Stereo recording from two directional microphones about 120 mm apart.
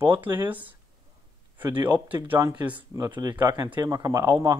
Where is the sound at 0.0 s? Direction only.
15° right (ahead or behind).